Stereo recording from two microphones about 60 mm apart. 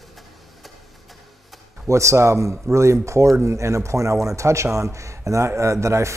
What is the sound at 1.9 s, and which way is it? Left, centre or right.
Speech, right.